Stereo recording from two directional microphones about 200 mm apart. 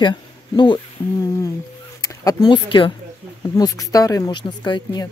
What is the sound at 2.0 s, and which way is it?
Speech, 20° left (ahead or behind).